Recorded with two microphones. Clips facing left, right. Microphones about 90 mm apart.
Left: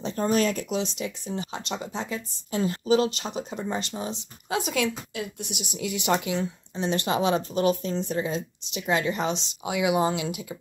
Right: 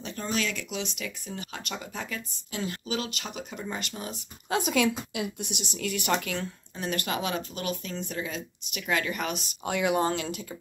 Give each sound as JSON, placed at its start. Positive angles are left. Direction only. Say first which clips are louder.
{"t": 0.0, "sound": "speech", "louder": "left 7 dB", "side_deg": 35}
{"t": 4.5, "sound": "speech", "louder": "right 1 dB", "side_deg": 0}
{"t": 9.7, "sound": "speech", "louder": "left 2 dB", "side_deg": 5}